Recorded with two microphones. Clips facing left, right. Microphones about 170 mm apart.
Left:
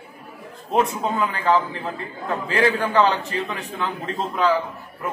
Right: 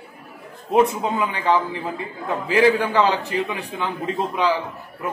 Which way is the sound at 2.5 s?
Centre (ahead or behind).